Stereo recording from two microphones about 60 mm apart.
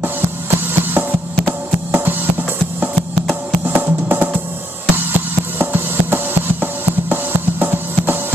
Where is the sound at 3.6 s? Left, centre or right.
Right.